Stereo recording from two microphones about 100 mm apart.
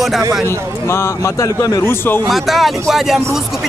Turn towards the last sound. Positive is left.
turn(degrees=-5)  # may be behind; listen again after turning